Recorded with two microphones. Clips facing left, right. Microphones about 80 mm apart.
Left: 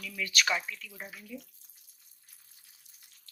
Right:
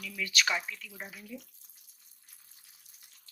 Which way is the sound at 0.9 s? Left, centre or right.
Centre.